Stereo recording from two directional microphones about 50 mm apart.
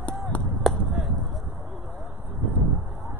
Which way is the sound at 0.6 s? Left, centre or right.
Centre.